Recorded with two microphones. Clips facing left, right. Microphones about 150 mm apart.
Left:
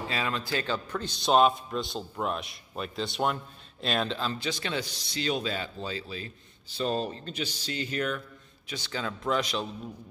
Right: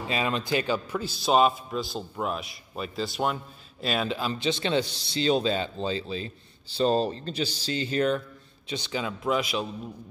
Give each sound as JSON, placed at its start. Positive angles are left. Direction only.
{"t": 0.1, "sound": "a man's voice", "side_deg": -20}
{"t": 4.4, "sound": "a man's voice", "side_deg": -25}